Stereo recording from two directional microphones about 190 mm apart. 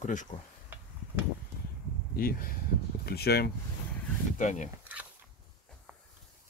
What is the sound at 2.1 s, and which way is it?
Speech, 50° left (ahead or behind).